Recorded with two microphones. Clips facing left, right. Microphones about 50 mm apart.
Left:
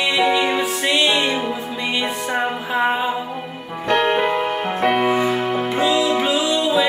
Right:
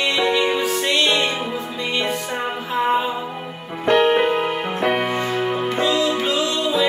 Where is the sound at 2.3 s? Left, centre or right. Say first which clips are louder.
Left 3 dB; centre.